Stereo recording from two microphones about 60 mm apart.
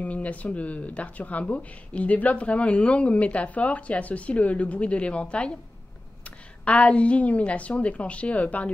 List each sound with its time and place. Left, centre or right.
0.0 s speech: left
6.6 s speech: centre